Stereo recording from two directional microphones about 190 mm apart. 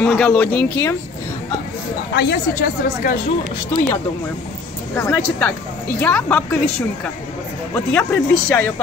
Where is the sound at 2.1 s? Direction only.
60° left (ahead or behind).